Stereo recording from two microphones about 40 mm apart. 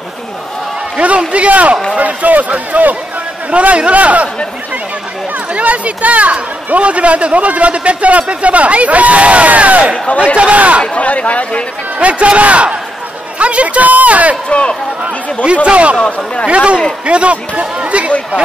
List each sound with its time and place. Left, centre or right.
0.9 s speech: right
3.5 s speech: right
5.5 s speech: right
11.0 s speech: left
12.0 s speech: right
14.5 s speech: left
15.4 s speech: right